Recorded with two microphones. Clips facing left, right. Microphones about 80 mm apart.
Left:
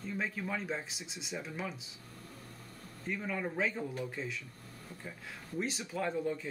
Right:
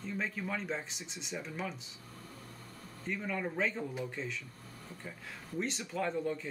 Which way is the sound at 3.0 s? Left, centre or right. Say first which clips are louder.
Even; centre.